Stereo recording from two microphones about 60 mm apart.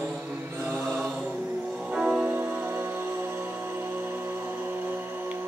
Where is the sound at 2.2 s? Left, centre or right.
Right.